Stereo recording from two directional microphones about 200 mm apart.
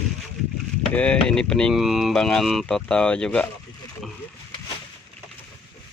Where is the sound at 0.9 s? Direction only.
5° left (ahead or behind).